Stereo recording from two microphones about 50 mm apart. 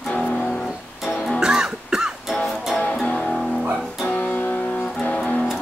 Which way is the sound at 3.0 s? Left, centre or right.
Centre.